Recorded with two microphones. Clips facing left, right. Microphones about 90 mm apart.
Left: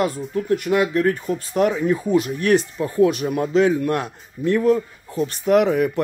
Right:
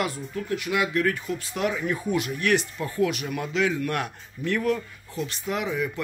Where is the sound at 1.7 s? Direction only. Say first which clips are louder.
Left 7 dB; 25° left (ahead or behind).